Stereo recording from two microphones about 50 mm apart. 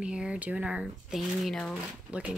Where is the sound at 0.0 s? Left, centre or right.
Centre.